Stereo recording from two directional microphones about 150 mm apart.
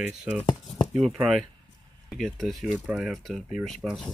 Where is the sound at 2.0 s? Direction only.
Centre (ahead or behind).